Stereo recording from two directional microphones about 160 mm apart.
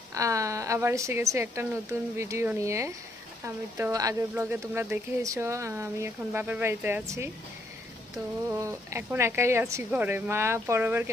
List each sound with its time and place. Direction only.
0.1 s speech: 20° right (ahead or behind)
8.5 s speech: 20° right (ahead or behind)